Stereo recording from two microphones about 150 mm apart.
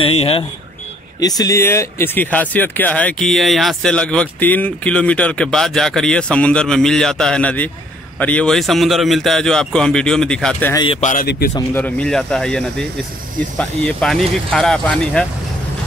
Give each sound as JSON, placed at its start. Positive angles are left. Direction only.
{"t": 0.0, "sound": "speech", "side_deg": 40}
{"t": 1.2, "sound": "speech", "side_deg": 25}
{"t": 11.0, "sound": "speech", "side_deg": 65}
{"t": 11.5, "sound": "speech", "side_deg": 10}